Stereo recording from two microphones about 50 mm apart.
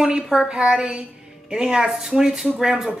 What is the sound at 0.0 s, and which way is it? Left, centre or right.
A woman's voice, centre.